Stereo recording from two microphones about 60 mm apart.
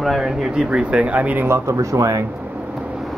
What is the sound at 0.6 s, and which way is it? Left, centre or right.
Speech, right.